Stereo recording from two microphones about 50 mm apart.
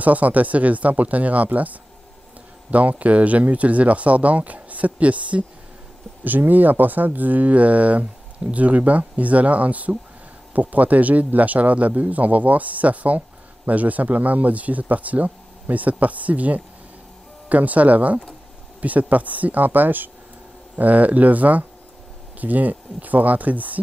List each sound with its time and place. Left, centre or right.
0.0 s speech: right